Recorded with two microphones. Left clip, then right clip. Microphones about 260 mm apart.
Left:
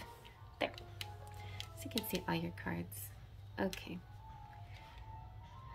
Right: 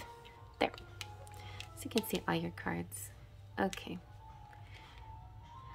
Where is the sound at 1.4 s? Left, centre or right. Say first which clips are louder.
Even; centre.